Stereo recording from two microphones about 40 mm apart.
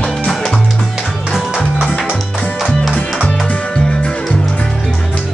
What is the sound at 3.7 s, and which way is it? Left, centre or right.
Music, left.